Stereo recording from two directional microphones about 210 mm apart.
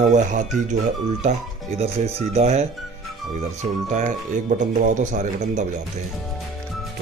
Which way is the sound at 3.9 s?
35° right (ahead or behind).